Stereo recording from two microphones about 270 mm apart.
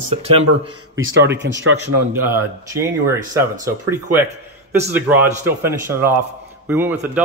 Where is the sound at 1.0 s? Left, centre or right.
Right.